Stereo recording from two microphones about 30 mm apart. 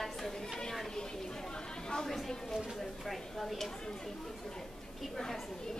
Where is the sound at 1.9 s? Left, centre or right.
Centre.